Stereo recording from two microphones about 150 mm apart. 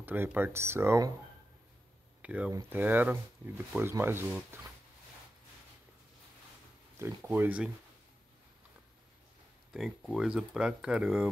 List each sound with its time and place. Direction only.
0.0 s speech: 15° right (ahead or behind)
2.2 s speech: 10° right (ahead or behind)
7.2 s speech: 10° right (ahead or behind)
9.7 s speech: centre (ahead or behind)